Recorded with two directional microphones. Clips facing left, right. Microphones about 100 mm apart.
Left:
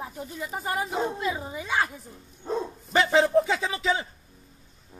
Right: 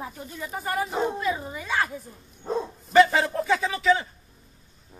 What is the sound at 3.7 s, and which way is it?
Speech, 25° left (ahead or behind).